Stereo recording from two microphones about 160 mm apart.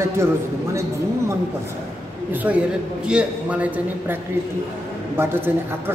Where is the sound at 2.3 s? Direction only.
10° right (ahead or behind).